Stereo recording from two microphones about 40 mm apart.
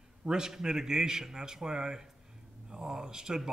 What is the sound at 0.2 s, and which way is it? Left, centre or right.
A man's voice, centre.